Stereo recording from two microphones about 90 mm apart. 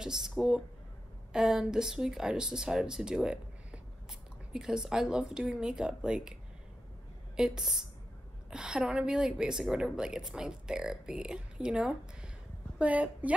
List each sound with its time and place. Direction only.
0.0 s speech: 5° right (ahead or behind)
7.3 s a woman's voice: 5° right (ahead or behind)